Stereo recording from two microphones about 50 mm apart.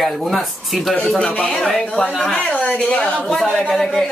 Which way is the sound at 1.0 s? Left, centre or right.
Centre.